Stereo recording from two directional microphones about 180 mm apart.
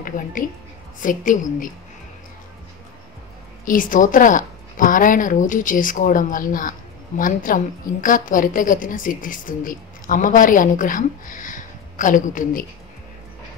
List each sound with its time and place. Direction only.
0.0 s a woman's voice: 50° left (ahead or behind)
3.6 s a woman's voice: 50° left (ahead or behind)